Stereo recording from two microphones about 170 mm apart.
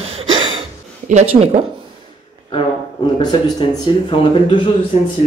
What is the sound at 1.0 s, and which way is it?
Speech, 40° right (ahead or behind).